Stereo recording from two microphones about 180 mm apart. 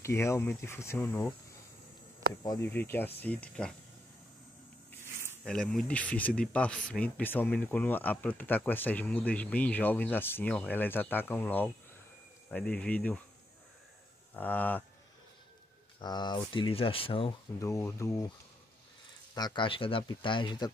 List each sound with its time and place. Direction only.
0.0 s speech: 15° left (ahead or behind)
2.4 s speech: 15° left (ahead or behind)
5.0 s a sound: 15° right (ahead or behind)
5.4 s speech: 5° left (ahead or behind)
14.3 s speech: 10° left (ahead or behind)
16.0 s speech: 25° left (ahead or behind)
17.6 s speech: 15° left (ahead or behind)
19.3 s speech: 25° left (ahead or behind)